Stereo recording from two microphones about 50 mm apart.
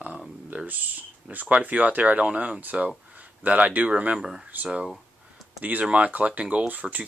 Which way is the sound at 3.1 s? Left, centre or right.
Right.